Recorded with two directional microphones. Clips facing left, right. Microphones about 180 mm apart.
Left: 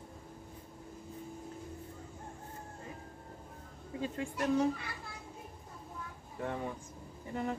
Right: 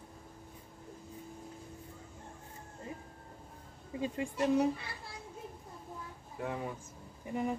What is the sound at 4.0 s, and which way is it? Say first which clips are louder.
Speech: right 2 dB; 15° right (ahead or behind).